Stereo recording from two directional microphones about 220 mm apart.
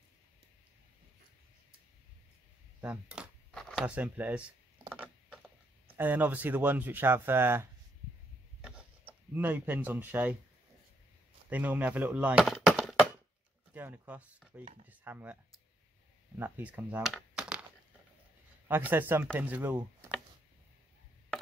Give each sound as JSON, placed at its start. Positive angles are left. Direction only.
{"t": 2.8, "sound": "coin", "side_deg": -5}
{"t": 5.9, "sound": "speech", "side_deg": -10}
{"t": 8.5, "sound": "a sound", "side_deg": -5}
{"t": 11.4, "sound": "speech", "side_deg": -5}
{"t": 16.3, "sound": "speech", "side_deg": -10}
{"t": 18.7, "sound": "speech", "side_deg": -10}